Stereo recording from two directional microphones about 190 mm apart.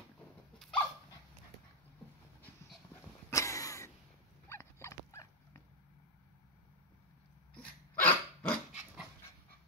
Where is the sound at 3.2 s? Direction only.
15° left (ahead or behind).